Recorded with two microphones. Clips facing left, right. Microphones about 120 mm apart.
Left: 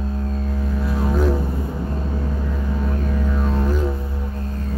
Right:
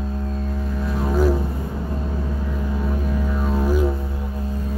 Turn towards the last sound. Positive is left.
turn(degrees=-5)  # may be behind; listen again after turning